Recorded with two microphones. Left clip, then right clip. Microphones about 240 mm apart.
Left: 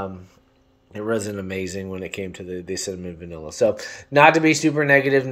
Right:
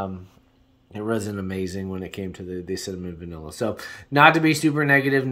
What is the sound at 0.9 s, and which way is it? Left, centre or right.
Speech, right.